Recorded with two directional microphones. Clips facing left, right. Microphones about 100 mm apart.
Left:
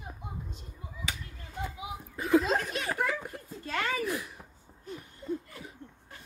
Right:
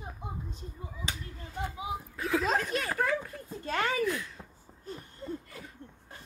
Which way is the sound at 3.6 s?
35° right (ahead or behind).